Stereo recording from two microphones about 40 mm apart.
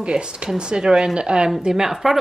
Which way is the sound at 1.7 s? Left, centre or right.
Centre.